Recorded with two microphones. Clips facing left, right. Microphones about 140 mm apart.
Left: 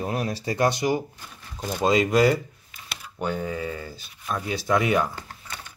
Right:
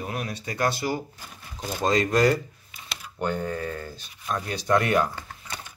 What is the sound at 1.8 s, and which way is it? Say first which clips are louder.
Speech: left 2 dB; 5° left (ahead or behind).